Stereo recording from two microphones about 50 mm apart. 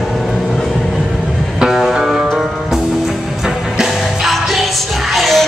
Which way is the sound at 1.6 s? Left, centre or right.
Centre.